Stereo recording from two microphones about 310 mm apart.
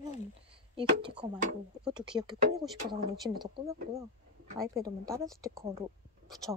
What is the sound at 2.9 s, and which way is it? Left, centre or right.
Speech, centre.